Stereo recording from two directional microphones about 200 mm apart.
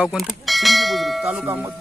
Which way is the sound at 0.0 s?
Centre (ahead or behind).